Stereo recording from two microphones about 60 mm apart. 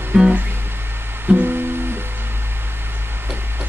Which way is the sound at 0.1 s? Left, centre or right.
Right.